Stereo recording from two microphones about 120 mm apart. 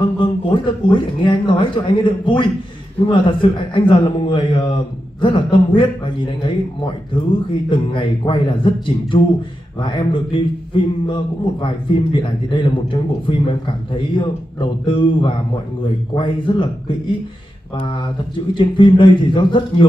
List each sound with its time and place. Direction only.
0.0 s speech: 40° left (ahead or behind)